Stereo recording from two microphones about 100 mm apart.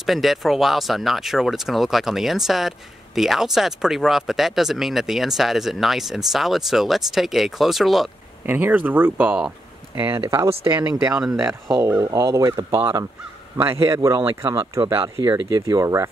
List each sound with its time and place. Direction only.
0.0 s speech: centre (ahead or behind)
8.5 s a man's voice: 20° right (ahead or behind)
11.3 s a man's voice: 30° right (ahead or behind)